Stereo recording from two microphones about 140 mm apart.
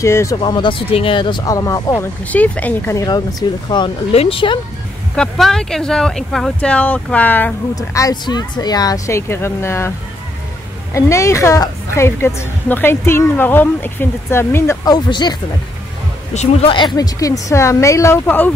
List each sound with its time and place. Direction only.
0.0 s a woman's voice: 20° left (ahead or behind)
0.4 s speech: 35° left (ahead or behind)
2.2 s speech: 10° left (ahead or behind); by 3.9 s 30° left (ahead or behind)
4.1 s speech: 45° left (ahead or behind)
5.1 s speech: 5° left (ahead or behind)
7.7 s a woman's voice: 25° left (ahead or behind)
14.9 s speech: 30° left (ahead or behind)
16.3 s a woman's voice: 40° left (ahead or behind); by 18.5 s 15° left (ahead or behind)